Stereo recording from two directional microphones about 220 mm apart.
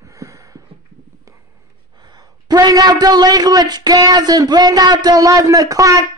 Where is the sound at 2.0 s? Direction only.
20° right (ahead or behind).